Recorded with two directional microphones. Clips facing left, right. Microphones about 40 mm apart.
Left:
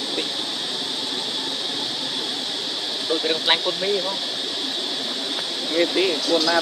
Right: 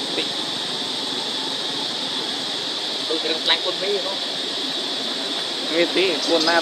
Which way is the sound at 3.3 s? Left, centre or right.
Centre.